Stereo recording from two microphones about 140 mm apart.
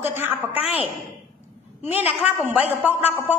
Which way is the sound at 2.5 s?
15° right (ahead or behind).